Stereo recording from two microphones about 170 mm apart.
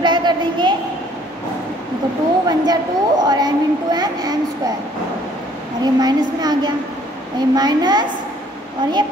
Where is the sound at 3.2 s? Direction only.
25° right (ahead or behind).